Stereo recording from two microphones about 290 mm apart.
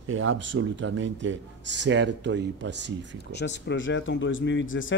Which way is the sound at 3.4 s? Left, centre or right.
Left.